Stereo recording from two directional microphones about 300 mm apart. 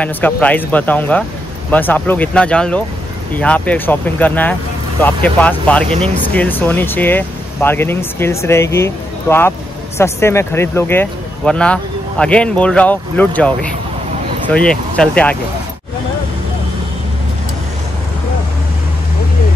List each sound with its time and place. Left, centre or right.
0.0 s speech: centre
5.9 s speech: centre
6.2 s speech: centre